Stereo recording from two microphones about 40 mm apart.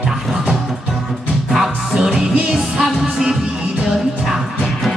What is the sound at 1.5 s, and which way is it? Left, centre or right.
Music, centre.